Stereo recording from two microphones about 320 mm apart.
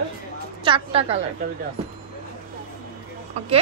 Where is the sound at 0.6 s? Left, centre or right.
Centre.